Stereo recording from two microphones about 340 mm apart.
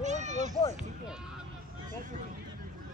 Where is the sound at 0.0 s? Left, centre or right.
Right.